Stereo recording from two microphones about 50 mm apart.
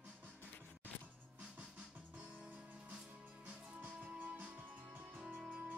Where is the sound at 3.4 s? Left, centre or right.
Right.